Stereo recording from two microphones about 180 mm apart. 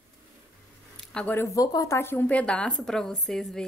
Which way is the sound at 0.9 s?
5° left (ahead or behind).